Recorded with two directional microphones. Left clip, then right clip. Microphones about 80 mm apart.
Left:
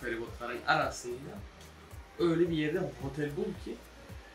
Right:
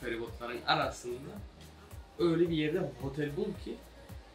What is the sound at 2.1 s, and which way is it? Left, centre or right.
Speech, centre.